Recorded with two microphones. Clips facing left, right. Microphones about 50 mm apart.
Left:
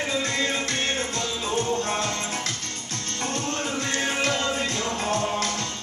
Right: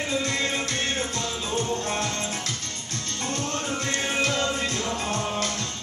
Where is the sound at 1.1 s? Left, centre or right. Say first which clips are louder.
Left 2 dB; left.